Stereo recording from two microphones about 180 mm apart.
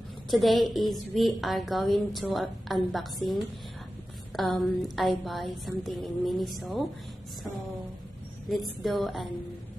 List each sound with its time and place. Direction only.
0.3 s a woman's voice: centre (ahead or behind)
8.5 s a woman's voice: centre (ahead or behind)